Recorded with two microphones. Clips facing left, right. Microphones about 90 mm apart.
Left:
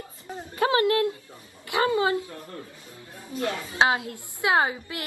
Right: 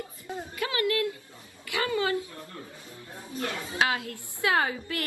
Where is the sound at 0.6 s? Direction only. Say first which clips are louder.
Left 7 dB; 30° left (ahead or behind).